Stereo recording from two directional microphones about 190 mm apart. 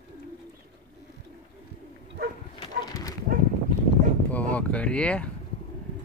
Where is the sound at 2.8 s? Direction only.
20° left (ahead or behind).